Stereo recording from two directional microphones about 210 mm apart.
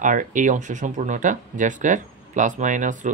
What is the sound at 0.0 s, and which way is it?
Speech, 40° right (ahead or behind).